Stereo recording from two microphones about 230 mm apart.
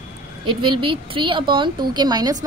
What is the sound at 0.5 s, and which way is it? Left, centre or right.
A woman's voice, right.